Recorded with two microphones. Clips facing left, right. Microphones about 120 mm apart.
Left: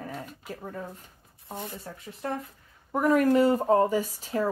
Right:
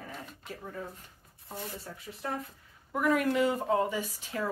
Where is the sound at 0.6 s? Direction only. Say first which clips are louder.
Left 2 dB; 40° left (ahead or behind).